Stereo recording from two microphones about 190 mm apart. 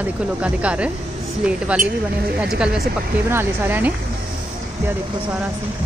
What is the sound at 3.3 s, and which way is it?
Speech, 10° right (ahead or behind).